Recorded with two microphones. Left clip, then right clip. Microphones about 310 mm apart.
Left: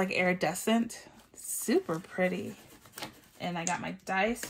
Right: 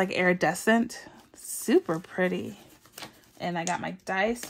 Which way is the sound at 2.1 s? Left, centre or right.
Right.